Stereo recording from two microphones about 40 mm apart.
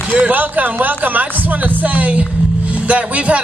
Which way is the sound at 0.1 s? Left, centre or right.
Right.